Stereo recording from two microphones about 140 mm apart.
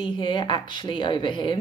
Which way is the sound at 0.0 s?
35° left (ahead or behind).